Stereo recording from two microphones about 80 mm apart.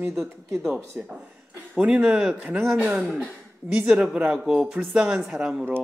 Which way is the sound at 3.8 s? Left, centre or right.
Centre.